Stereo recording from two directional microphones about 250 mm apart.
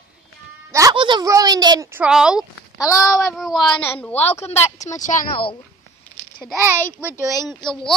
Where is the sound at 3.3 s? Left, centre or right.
Centre; by 5.5 s left.